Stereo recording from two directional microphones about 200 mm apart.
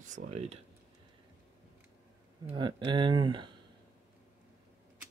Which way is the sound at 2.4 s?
25° right (ahead or behind).